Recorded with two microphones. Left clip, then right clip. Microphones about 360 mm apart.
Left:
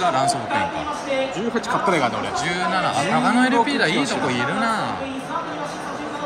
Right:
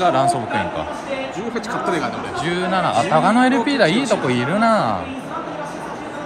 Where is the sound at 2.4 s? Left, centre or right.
Centre.